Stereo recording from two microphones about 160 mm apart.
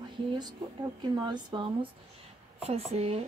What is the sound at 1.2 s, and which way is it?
Speech, 30° right (ahead or behind).